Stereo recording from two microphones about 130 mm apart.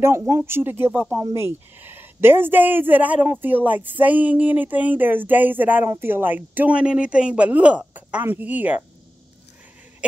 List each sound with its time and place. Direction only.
0.0 s speech: 20° right (ahead or behind)